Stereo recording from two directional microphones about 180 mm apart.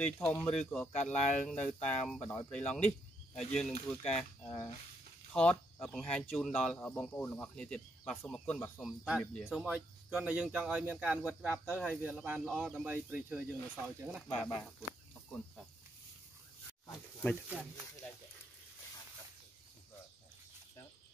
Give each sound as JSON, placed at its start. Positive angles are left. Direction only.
{"t": 0.0, "sound": "speech", "side_deg": 5}
{"t": 14.3, "sound": "speech", "side_deg": 0}
{"t": 17.5, "sound": "speech", "side_deg": -5}